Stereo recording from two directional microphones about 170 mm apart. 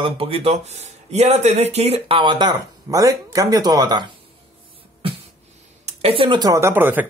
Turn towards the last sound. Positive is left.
turn(degrees=-10)  # may be behind; listen again after turning